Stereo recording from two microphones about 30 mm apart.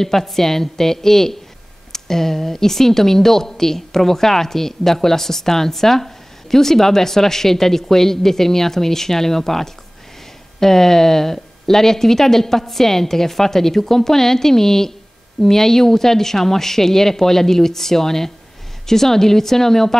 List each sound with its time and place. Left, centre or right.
0.0 s a woman's voice: centre